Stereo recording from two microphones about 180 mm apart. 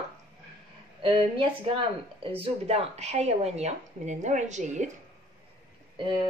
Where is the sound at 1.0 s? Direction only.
25° right (ahead or behind); by 4.9 s 40° right (ahead or behind).